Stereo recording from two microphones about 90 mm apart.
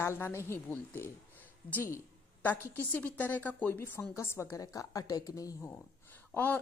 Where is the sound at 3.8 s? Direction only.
30° left (ahead or behind).